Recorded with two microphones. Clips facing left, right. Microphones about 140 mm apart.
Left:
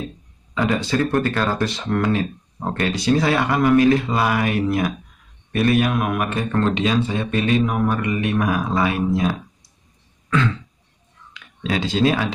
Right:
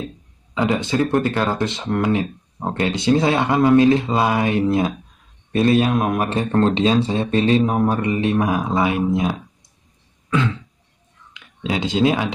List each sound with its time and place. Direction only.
0.6 s speech: 20° right (ahead or behind)
11.3 s speech: 20° right (ahead or behind)